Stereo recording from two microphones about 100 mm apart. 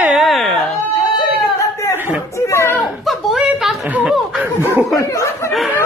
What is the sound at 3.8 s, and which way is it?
Speech, 15° right (ahead or behind).